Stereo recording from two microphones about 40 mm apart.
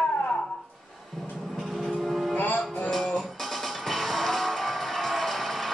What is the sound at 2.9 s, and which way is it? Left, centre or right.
Music, centre.